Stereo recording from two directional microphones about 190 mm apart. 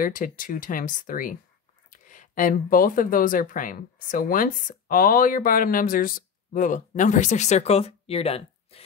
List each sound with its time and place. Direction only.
0.0 s speech: 45° left (ahead or behind)